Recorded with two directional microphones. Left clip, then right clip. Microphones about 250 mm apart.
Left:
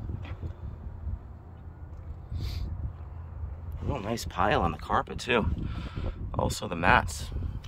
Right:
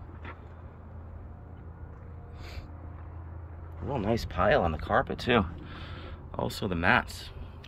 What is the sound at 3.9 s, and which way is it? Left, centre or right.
Speech, centre.